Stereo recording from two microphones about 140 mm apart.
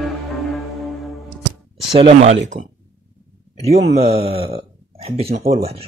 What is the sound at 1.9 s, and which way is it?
Speech, 50° right (ahead or behind).